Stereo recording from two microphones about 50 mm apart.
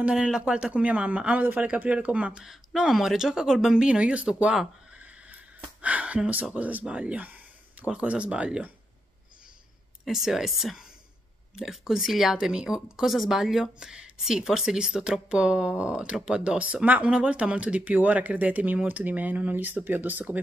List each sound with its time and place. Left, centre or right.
0.1 s speech: centre
2.4 s speech: centre
4.9 s a sound: right
6.5 s speech: right
10.0 s speech: centre
12.4 s speech: centre; by 20.3 s right